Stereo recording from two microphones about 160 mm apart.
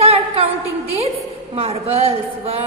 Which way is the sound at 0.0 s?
40° right (ahead or behind).